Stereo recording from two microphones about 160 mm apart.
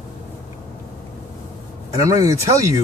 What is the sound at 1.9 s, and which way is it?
Speech, 20° right (ahead or behind).